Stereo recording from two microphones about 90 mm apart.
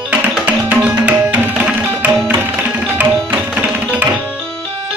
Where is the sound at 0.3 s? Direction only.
15° right (ahead or behind).